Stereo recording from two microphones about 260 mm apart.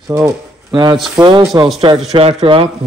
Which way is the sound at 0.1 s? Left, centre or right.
Centre.